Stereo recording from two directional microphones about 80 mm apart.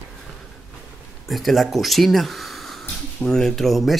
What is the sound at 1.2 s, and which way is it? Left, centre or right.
Speech, centre.